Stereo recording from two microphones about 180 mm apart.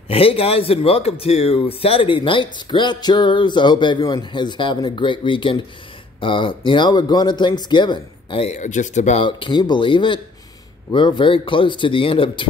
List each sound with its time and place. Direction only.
0.1 s a man's voice: 30° left (ahead or behind)
9.2 s speech: 25° left (ahead or behind)